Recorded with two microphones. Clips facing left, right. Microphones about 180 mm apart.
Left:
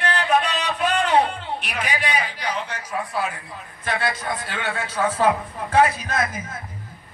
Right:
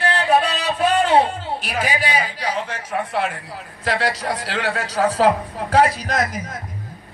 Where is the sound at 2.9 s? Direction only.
70° right (ahead or behind).